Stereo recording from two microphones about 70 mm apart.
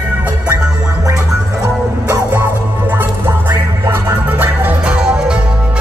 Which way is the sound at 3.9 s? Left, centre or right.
Right.